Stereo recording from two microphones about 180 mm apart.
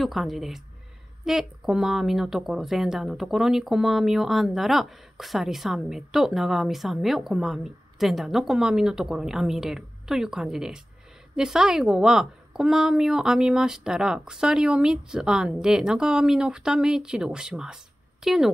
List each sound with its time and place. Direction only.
0.0 s speech: centre (ahead or behind)